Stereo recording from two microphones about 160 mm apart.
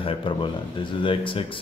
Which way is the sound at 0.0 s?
30° left (ahead or behind).